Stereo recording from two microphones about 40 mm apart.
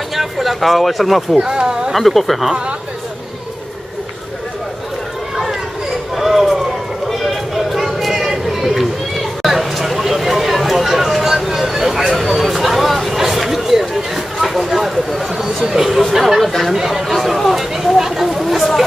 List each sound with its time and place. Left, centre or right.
0.1 s speech: centre
1.3 s speech: centre
1.9 s speech: centre
5.3 s children playing: centre
6.1 s a sound: centre
15.1 s speech: centre
16.3 s speech: centre
16.7 s chatter: centre